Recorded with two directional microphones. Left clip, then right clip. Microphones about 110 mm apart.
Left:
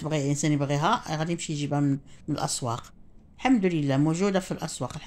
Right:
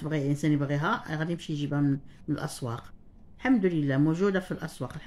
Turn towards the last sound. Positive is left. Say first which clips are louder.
# left 4 dB
turn(degrees=20)  # may be behind; listen again after turning